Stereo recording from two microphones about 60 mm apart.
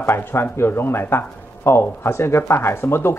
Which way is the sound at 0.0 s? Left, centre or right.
Left.